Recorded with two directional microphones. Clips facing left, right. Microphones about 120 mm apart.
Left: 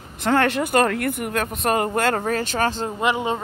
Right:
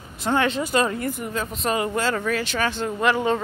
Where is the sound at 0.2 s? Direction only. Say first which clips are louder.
Left 3 dB; 65° left (ahead or behind).